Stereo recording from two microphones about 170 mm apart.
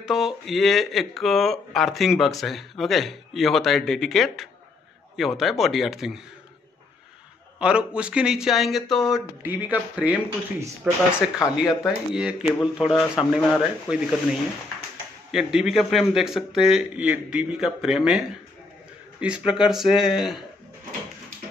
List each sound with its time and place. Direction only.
0.0 s speech: centre (ahead or behind)
7.5 s speech: 5° right (ahead or behind)
9.4 s speech: 10° right (ahead or behind)
11.3 s speech: 20° left (ahead or behind)
12.1 s speech: 5° right (ahead or behind)
15.3 s speech: 5° right (ahead or behind)